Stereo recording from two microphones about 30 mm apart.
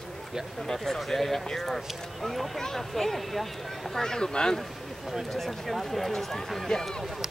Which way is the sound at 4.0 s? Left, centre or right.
Centre.